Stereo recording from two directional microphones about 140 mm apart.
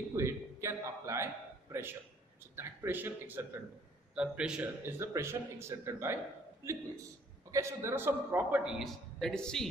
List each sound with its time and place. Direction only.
0.1 s a sound: 20° right (ahead or behind)
2.5 s a man's voice: 15° right (ahead or behind)
7.5 s a man's voice: 20° right (ahead or behind); by 9.7 s 5° left (ahead or behind)